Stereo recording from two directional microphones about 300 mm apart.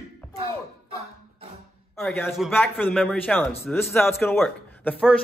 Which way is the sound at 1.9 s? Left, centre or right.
Centre.